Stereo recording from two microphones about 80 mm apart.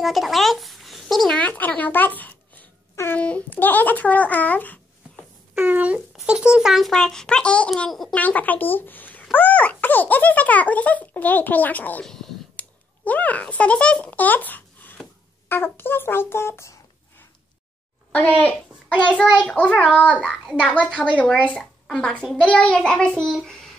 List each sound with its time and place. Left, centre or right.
0.0 s a child's voice: centre
1.3 s a woman's voice: left
5.5 s speech: right
6.2 s a child's voice: centre; by 12.0 s left
12.0 s speech: centre
12.5 s a child's voice: centre
18.1 s a child's voice: centre